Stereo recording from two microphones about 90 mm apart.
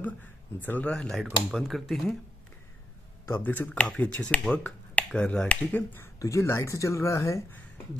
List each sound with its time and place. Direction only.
0.6 s speech: 20° left (ahead or behind)
0.9 s speech: 5° left (ahead or behind)
3.3 s speech: 20° left (ahead or behind)
6.1 s speech: 35° left (ahead or behind)